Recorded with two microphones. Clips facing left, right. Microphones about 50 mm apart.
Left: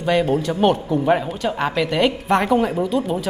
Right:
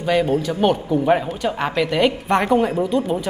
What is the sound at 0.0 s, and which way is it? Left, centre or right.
A woman's voice, centre.